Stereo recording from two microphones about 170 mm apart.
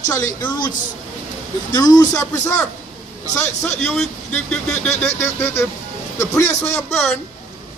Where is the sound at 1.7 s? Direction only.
20° left (ahead or behind).